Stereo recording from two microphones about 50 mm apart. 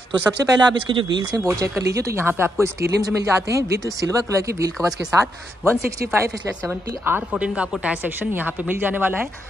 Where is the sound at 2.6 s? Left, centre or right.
Right.